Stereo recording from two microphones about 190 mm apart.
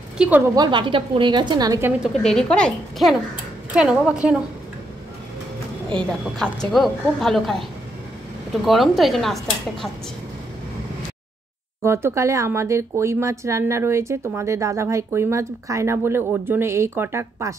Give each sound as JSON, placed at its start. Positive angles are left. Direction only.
{"t": 0.2, "sound": "a woman's voice", "side_deg": -5}
{"t": 0.6, "sound": "a woman's voice", "side_deg": -25}
{"t": 2.2, "sound": "a woman's voice", "side_deg": 5}
{"t": 5.9, "sound": "a woman's voice", "side_deg": 5}
{"t": 8.6, "sound": "a woman's voice", "side_deg": 0}
{"t": 11.8, "sound": "speech", "side_deg": -15}